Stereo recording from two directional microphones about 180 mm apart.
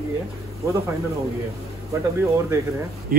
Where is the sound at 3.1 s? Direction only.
55° right (ahead or behind).